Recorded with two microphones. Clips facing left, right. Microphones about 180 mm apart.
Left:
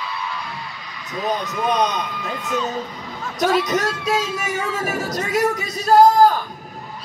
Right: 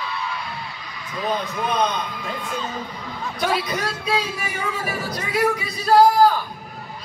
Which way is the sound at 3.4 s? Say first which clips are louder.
Left 5 dB; 45° left (ahead or behind).